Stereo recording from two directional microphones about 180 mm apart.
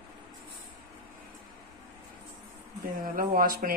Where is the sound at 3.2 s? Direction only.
55° right (ahead or behind).